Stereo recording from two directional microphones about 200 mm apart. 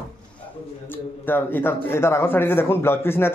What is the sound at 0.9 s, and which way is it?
A man's voice, 10° left (ahead or behind).